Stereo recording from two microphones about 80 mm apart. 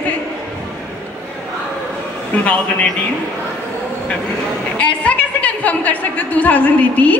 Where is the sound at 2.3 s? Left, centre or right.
Centre.